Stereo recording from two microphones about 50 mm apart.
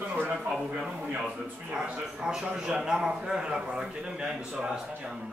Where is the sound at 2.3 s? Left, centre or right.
Centre.